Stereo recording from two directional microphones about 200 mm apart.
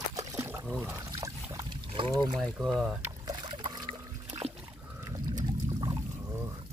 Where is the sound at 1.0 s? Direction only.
15° right (ahead or behind).